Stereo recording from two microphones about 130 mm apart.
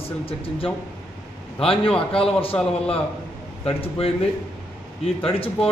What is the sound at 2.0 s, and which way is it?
Speech, 45° left (ahead or behind).